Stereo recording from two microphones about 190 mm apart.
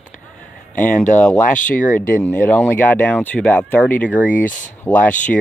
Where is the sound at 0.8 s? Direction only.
40° left (ahead or behind).